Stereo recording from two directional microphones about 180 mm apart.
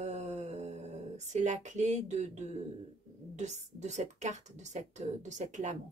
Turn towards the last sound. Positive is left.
turn(degrees=-40)  # may be behind; listen again after turning